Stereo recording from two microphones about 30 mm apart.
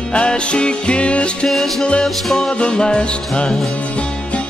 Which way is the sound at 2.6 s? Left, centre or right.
Left.